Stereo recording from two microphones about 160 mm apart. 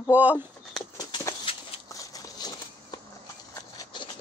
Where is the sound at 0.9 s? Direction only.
25° left (ahead or behind).